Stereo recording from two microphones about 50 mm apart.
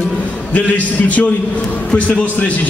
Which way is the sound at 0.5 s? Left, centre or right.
Left.